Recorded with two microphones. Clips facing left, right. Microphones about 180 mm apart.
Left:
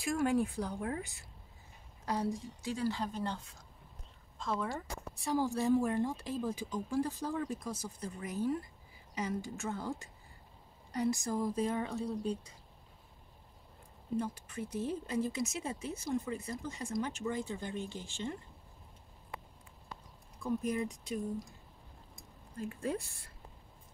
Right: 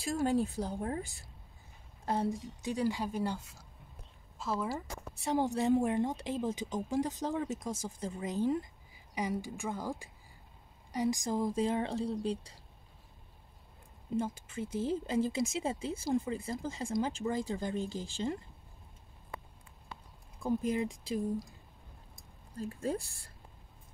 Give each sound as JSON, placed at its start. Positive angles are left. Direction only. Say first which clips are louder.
{"t": 0.0, "sound": "speech", "louder": "even", "side_deg": -35}
{"t": 0.7, "sound": "speech", "louder": "right 2 dB", "side_deg": -40}
{"t": 2.2, "sound": "speech", "louder": "right 2 dB", "side_deg": -20}
{"t": 5.2, "sound": "speech", "louder": "right 2 dB", "side_deg": -20}
{"t": 14.1, "sound": "speech", "louder": "right 2 dB", "side_deg": -25}
{"t": 20.4, "sound": "speech", "louder": "right 2 dB", "side_deg": -25}
{"t": 22.6, "sound": "speech", "louder": "right 1 dB", "side_deg": -35}